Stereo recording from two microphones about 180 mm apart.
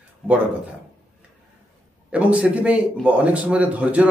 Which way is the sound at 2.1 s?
5° right (ahead or behind).